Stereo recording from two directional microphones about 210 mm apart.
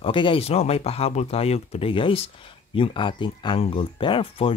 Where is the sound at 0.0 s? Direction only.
25° left (ahead or behind).